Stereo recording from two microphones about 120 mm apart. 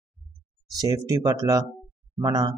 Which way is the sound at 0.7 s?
35° right (ahead or behind).